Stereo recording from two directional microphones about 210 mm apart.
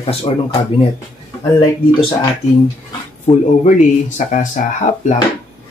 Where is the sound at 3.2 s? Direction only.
35° left (ahead or behind).